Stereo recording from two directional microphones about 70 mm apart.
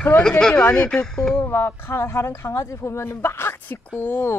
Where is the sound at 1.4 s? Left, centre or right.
Left.